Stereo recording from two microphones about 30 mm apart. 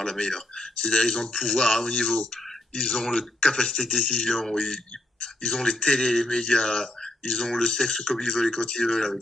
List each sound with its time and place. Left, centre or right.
0.0 s speech: left
8.5 s speech: left
8.8 s speech: left